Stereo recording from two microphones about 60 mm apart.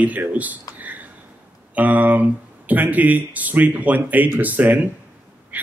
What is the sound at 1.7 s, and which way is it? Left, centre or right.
Speech, right.